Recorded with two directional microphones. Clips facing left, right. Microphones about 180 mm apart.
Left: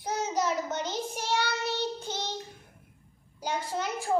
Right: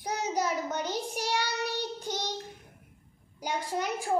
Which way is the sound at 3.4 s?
15° right (ahead or behind).